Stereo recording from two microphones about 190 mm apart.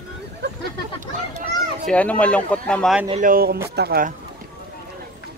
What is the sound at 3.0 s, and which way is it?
Speech, 40° right (ahead or behind).